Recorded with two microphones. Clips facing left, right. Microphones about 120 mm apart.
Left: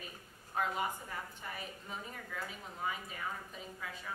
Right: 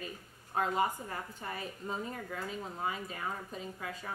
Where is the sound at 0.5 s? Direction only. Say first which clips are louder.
Right 5 dB; 35° right (ahead or behind).